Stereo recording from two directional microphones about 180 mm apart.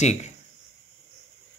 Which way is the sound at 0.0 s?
40° left (ahead or behind).